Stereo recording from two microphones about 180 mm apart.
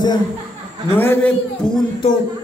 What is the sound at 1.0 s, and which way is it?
Speech, 10° left (ahead or behind).